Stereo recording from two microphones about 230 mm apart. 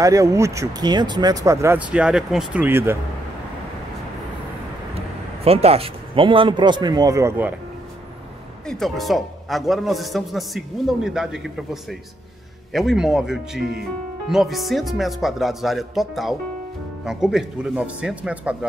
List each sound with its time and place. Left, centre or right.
0.0 s speech: centre
4.9 s a man's voice: right; by 7.5 s centre
8.6 s a man's voice: centre